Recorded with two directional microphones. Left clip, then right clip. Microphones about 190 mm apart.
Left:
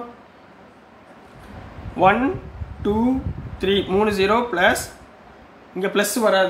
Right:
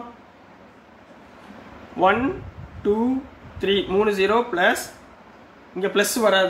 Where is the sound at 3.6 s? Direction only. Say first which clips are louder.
Left 1 dB; 25° left (ahead or behind).